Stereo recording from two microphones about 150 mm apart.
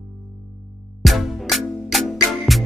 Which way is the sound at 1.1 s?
Centre (ahead or behind).